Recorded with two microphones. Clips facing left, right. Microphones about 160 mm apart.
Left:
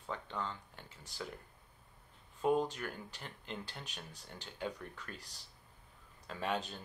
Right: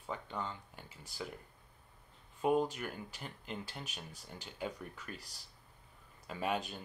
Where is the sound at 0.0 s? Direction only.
10° right (ahead or behind).